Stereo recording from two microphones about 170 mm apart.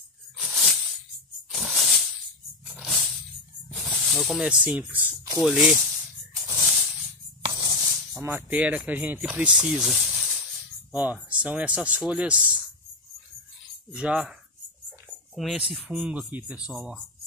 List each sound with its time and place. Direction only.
0.4 s a sound: centre (ahead or behind)
1.5 s music: centre (ahead or behind)
3.6 s speech: centre (ahead or behind)
6.4 s a sound: 15° right (ahead or behind)
7.4 s music: 25° right (ahead or behind)
8.1 s speech: 15° right (ahead or behind)
13.9 s speech: 5° right (ahead or behind)
14.9 s a sound: centre (ahead or behind)
15.7 s speech: 5° right (ahead or behind)